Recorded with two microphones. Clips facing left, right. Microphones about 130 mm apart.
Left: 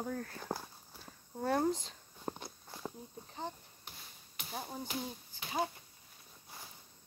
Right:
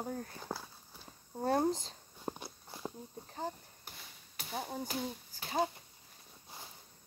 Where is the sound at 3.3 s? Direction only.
40° right (ahead or behind).